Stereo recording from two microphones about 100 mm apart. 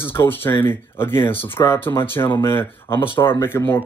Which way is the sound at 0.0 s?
25° left (ahead or behind).